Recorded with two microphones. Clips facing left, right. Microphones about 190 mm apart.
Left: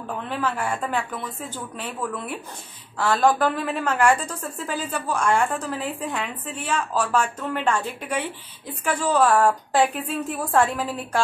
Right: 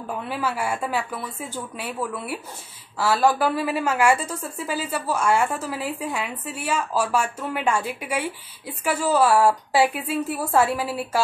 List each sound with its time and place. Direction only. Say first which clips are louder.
0.0 s a woman's voice: even; 10° right (ahead or behind)